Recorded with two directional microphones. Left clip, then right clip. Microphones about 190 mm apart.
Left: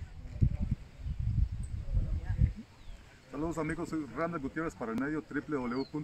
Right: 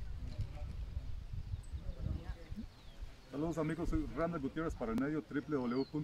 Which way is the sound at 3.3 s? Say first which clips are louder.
Left 3 dB; 15° right (ahead or behind).